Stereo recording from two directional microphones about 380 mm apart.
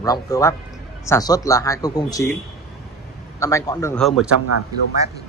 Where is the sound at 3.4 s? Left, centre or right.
Centre.